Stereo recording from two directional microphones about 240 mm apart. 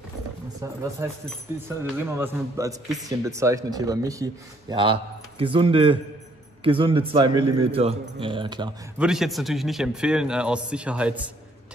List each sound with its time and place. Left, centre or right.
1.0 s speech: centre
8.9 s a man's voice: centre